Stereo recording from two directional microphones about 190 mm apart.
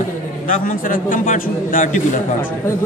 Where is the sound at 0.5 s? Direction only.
45° left (ahead or behind).